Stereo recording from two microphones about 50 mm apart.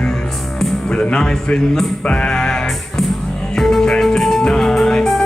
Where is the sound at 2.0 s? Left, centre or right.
Left.